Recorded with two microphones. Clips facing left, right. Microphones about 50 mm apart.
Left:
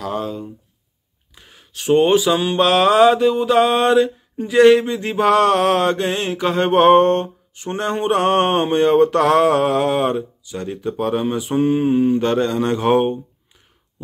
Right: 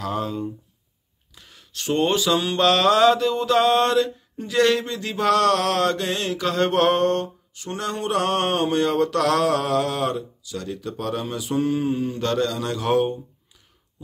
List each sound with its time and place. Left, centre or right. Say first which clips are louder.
0.0 s speech: left 2 dB; centre
1.3 s mantra: left 1 dB; left